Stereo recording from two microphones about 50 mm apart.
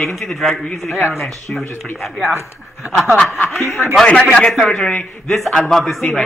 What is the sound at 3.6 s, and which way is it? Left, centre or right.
Speech, left.